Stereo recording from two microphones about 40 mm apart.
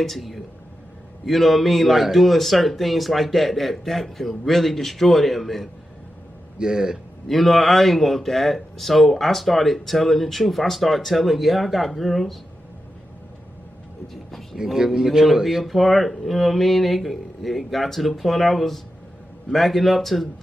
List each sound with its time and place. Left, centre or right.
0.0 s speech: centre
6.6 s a man's voice: centre
7.2 s speech: centre
14.0 s vehicle: centre
14.6 s speech: centre